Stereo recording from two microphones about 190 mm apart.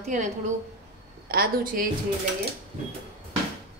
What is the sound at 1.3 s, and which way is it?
Speech, 50° right (ahead or behind).